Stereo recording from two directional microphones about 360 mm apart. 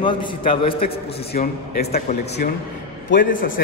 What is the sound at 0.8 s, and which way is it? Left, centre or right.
A man's voice, left.